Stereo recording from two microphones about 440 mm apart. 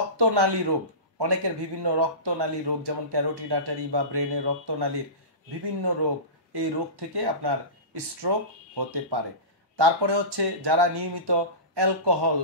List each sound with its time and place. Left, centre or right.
0.2 s a man's voice: right